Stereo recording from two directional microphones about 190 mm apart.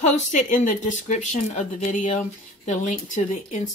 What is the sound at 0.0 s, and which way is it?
Speech, 40° left (ahead or behind).